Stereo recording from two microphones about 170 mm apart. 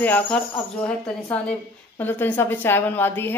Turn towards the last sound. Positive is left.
turn(degrees=10)  # may be behind; listen again after turning